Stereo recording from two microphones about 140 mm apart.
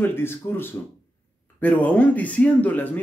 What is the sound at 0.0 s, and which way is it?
Speech, 15° left (ahead or behind).